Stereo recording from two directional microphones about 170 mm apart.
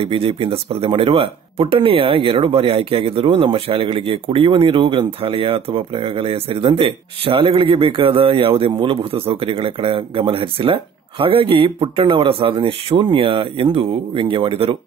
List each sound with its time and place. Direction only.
0.0 s speech: 35° right (ahead or behind)